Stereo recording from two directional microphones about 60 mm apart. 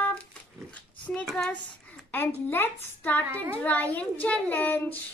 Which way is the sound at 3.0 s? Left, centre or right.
Left.